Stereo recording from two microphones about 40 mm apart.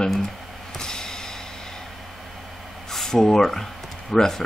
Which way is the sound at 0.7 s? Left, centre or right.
Centre.